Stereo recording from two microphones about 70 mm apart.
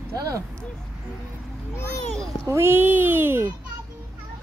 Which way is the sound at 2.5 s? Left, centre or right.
Right.